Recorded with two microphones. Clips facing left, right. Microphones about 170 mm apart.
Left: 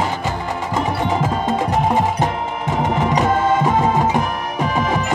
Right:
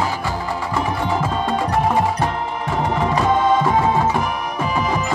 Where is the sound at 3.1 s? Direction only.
20° left (ahead or behind).